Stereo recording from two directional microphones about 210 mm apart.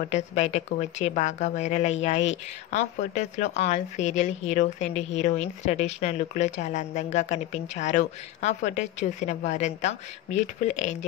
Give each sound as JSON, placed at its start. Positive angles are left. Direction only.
{"t": 0.1, "sound": "a woman's voice", "side_deg": 30}